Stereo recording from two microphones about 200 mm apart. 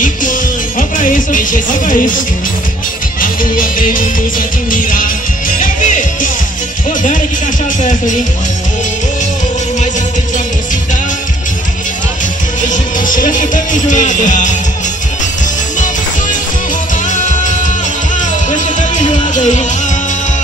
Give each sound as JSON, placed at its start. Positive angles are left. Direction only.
{"t": 0.0, "sound": "music", "side_deg": 40}
{"t": 12.6, "sound": "music", "side_deg": 40}
{"t": 17.1, "sound": "music", "side_deg": 40}